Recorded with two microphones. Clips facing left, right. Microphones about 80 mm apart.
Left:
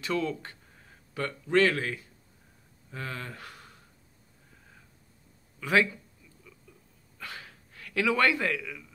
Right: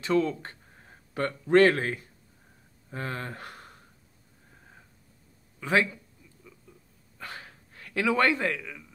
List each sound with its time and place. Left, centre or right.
0.0 s speech: right
5.6 s a man's voice: right
6.5 s a sound: right